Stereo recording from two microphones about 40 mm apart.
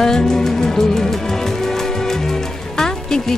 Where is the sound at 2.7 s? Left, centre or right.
Centre.